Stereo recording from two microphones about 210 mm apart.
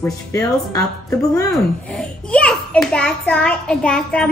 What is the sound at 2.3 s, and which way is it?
A child's voice, 5° left (ahead or behind).